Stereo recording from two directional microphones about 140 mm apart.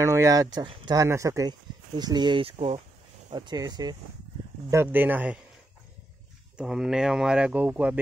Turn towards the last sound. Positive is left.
turn(degrees=-10)  # may be behind; listen again after turning